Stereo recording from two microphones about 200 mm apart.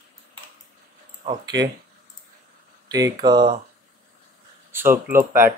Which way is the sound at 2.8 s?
20° right (ahead or behind).